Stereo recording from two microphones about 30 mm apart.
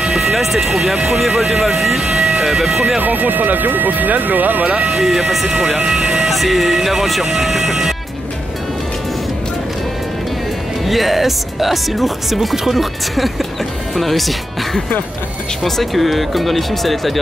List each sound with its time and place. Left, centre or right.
0.2 s speech: centre
1.4 s speech: right
1.8 s speech: centre
2.4 s speech: centre
3.0 s speech: right
4.6 s speech: right
5.0 s speech: centre
5.5 s speech: centre
6.3 s speech: centre
10.9 s speech: centre